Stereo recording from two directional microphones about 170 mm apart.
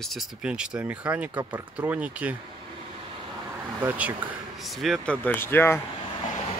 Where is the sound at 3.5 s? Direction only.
10° right (ahead or behind); by 5.8 s 15° left (ahead or behind).